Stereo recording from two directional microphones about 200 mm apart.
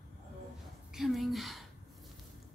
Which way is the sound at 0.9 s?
Centre (ahead or behind).